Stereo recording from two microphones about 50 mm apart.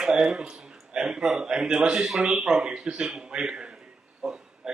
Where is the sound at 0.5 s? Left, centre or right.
Centre.